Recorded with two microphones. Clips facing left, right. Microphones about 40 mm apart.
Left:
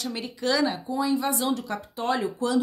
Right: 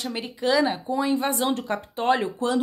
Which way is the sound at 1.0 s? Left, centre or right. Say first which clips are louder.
Right 1 dB; right.